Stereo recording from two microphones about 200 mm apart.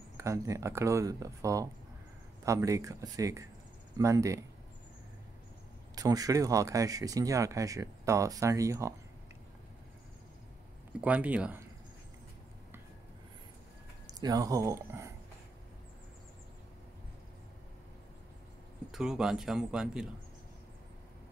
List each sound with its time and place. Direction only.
0.2 s speech: 15° right (ahead or behind)
5.9 s speech: 20° right (ahead or behind)
10.9 s speech: 5° right (ahead or behind)
14.2 s speech: 20° right (ahead or behind)
18.9 s speech: 5° right (ahead or behind)